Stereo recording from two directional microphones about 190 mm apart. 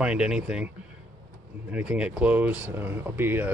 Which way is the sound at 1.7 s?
5° right (ahead or behind).